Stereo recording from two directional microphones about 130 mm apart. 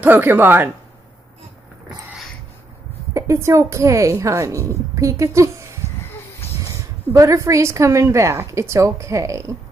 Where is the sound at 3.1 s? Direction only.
20° right (ahead or behind).